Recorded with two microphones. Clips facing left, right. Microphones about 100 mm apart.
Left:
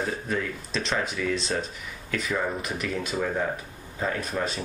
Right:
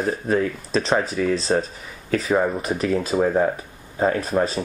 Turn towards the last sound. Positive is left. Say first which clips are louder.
# right 8 dB
turn(degrees=-35)  # may be behind; listen again after turning